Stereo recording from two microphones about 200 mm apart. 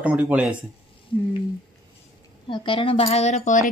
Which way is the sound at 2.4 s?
25° left (ahead or behind).